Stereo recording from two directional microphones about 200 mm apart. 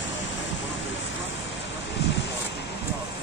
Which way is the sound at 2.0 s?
55° left (ahead or behind).